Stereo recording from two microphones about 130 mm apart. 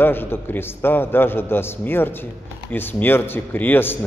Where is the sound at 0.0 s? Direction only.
15° left (ahead or behind).